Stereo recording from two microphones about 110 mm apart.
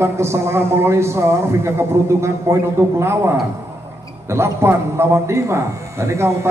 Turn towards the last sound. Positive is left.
turn(degrees=-25)  # may be behind; listen again after turning